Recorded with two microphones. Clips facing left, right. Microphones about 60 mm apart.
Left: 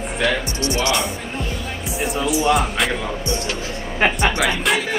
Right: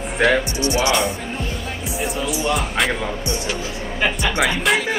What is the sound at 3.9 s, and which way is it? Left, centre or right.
Speech, left.